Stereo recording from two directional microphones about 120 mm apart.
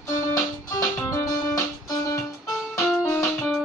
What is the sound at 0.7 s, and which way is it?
Music, 30° left (ahead or behind).